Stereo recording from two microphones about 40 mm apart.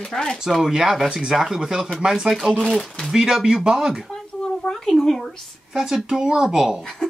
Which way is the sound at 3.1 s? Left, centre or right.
Centre.